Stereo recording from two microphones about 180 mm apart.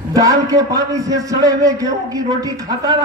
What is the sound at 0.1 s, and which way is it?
A man's voice, 20° right (ahead or behind).